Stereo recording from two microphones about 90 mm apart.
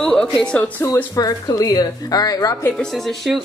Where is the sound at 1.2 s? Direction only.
45° left (ahead or behind).